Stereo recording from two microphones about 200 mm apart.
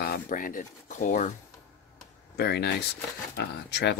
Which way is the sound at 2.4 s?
55° left (ahead or behind).